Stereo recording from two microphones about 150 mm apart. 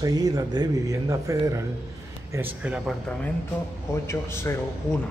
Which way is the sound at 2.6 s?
5° right (ahead or behind).